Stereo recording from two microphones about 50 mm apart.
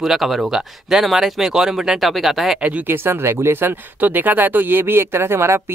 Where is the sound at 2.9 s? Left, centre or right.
Right.